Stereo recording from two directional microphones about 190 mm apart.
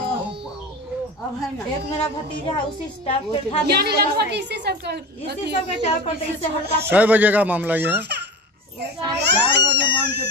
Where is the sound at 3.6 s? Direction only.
55° right (ahead or behind).